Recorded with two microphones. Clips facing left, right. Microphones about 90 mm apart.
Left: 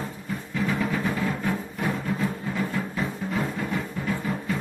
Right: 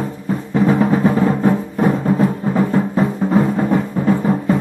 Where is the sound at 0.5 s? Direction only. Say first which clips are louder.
Right 12 dB; 40° right (ahead or behind).